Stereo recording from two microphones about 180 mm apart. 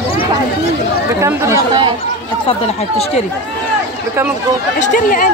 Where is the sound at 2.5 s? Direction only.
35° left (ahead or behind).